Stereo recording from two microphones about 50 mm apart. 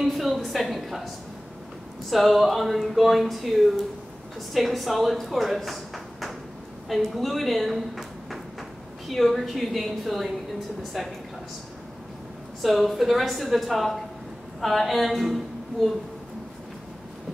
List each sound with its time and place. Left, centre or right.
0.0 s speech: centre
2.0 s speech: centre
6.9 s a woman's voice: centre
12.6 s a woman's voice: centre